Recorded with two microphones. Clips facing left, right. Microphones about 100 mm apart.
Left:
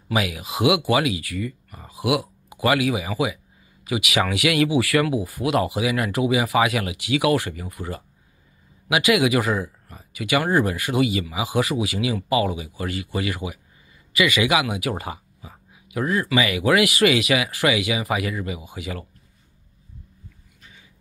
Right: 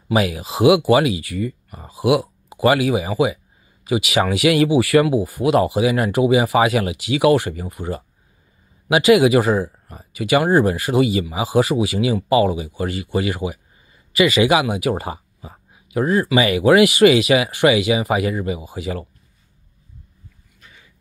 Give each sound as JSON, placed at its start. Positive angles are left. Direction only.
{"t": 0.1, "sound": "speech", "side_deg": -30}